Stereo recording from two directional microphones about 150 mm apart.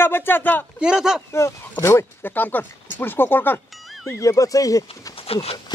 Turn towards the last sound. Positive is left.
turn(degrees=40)  # may be behind; listen again after turning